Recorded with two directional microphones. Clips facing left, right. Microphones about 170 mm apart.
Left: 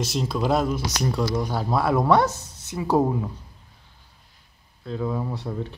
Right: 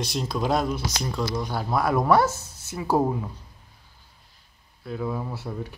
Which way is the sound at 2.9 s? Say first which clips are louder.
Left 2 dB; centre (ahead or behind).